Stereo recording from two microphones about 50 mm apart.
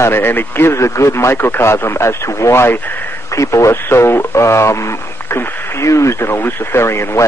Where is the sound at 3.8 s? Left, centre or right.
Left.